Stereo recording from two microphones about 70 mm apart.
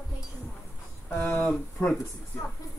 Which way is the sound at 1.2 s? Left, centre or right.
Left.